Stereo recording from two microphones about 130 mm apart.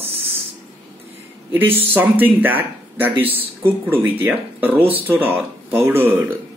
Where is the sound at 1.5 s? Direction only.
15° right (ahead or behind).